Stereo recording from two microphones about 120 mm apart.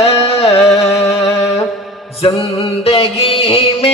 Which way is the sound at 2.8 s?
55° left (ahead or behind).